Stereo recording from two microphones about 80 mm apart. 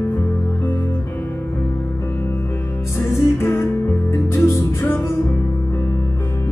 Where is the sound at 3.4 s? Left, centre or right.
Left.